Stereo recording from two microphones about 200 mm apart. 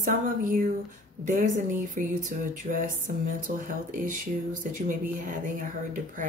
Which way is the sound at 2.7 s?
50° right (ahead or behind).